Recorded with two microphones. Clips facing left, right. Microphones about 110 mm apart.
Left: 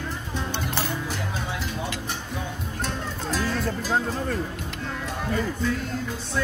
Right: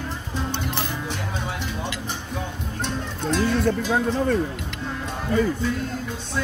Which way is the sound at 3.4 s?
85° right.